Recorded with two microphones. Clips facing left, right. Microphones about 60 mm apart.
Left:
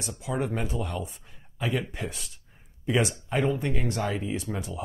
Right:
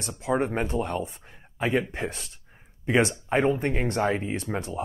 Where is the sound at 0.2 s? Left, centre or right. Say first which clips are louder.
Right 5 dB; right.